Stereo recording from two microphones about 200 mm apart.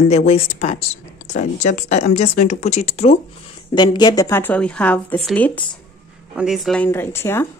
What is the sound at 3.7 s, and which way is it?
Speech, 20° left (ahead or behind).